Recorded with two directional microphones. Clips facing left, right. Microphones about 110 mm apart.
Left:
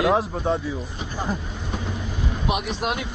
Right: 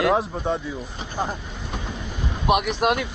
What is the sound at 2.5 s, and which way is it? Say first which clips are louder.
Speech: right 7 dB; 60° right (ahead or behind).